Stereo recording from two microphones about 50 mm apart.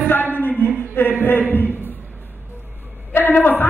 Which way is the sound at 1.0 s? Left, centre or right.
Left.